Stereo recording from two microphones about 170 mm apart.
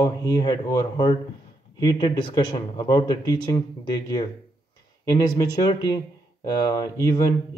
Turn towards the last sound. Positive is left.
turn(degrees=25)  # may be behind; listen again after turning